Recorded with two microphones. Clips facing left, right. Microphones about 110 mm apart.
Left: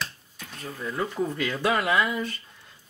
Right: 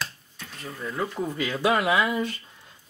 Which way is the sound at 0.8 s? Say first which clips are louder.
Left 1 dB; centre (ahead or behind).